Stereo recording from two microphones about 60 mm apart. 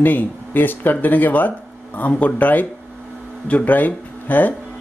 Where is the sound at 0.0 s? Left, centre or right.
Left.